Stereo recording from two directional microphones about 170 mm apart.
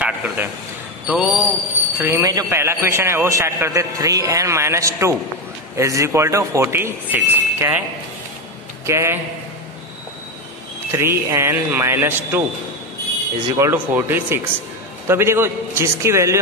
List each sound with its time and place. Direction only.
0.0 s a sound: 5° right (ahead or behind)
2.0 s a man's voice: 15° right (ahead or behind)
8.8 s a man's voice: 15° right (ahead or behind)
10.9 s a man's voice: 15° right (ahead or behind)
13.6 s a man's voice: 15° right (ahead or behind)